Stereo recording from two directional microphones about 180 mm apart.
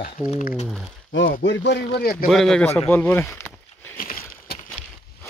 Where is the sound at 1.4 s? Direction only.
75° left (ahead or behind).